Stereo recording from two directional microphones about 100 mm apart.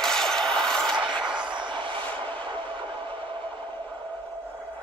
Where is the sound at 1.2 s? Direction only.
50° right (ahead or behind).